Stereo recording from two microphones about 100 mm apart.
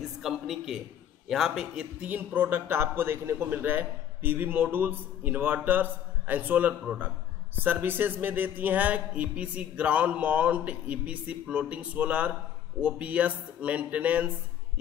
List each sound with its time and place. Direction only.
0.2 s a man's voice: 5° right (ahead or behind)